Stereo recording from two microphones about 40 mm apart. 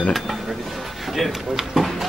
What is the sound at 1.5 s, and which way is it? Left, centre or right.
Speech, centre.